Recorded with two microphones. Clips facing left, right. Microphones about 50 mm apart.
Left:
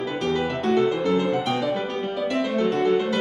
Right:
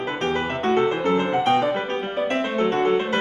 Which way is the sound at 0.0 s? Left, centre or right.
Right.